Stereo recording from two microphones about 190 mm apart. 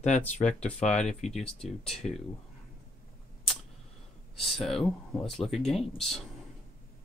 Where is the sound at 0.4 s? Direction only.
40° left (ahead or behind).